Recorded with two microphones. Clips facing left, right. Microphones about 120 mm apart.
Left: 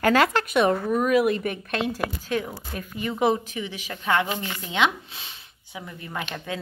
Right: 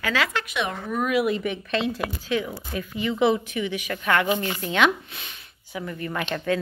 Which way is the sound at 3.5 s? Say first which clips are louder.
Right 5 dB; 30° left (ahead or behind).